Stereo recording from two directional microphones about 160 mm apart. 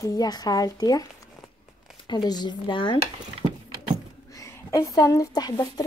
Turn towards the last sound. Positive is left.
turn(degrees=25)  # may be behind; listen again after turning